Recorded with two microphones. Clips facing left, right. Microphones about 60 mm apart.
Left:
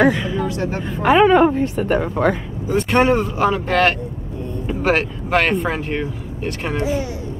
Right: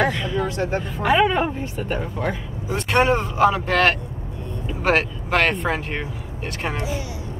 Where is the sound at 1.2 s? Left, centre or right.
Left.